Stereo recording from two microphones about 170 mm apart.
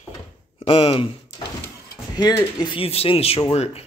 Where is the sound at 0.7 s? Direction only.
30° left (ahead or behind).